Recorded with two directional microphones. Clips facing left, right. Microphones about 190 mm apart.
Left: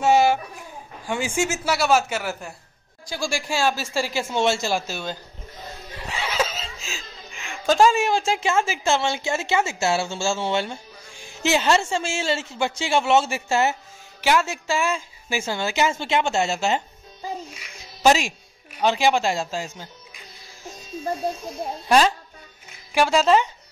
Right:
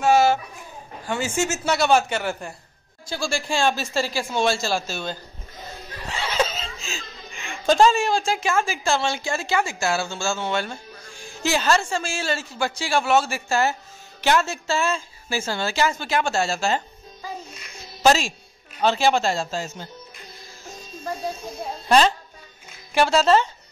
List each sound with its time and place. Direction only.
0.0 s a sound: 15° left (ahead or behind)
1.0 s speech: 15° left (ahead or behind)
5.9 s music: 10° left (ahead or behind)
7.9 s a woman's voice: 20° left (ahead or behind)
14.2 s speech: 10° left (ahead or behind)
17.6 s a sound: 15° left (ahead or behind)
18.8 s speech: 15° left (ahead or behind)
21.8 s speech: 10° left (ahead or behind)